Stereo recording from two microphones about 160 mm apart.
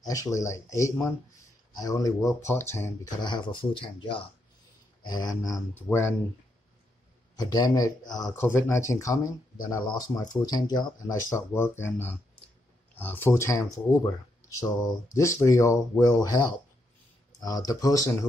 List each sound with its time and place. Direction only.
0.0 s speech: 20° left (ahead or behind)
3.2 s speech: 25° left (ahead or behind)
7.3 s speech: 25° left (ahead or behind)